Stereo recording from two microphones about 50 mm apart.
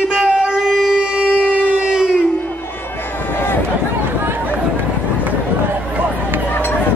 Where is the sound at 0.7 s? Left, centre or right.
Centre.